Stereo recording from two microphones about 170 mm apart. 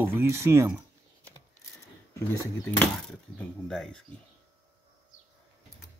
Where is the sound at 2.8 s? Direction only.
5° left (ahead or behind).